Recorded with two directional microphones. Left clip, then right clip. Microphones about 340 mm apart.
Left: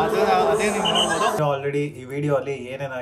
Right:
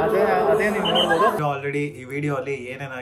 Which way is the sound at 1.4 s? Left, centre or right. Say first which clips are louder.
Left 2 dB; centre.